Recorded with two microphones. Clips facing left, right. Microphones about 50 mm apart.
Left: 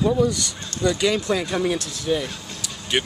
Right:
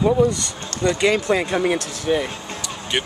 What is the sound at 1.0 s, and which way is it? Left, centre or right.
Speech, right.